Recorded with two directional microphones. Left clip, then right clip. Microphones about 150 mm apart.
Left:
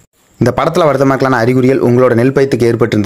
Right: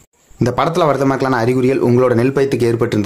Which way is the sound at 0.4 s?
35° left (ahead or behind).